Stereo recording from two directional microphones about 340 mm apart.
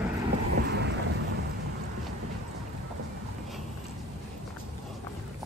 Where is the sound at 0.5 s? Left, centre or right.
Right.